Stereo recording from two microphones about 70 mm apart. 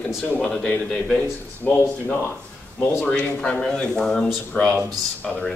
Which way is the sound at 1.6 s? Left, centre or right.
Left.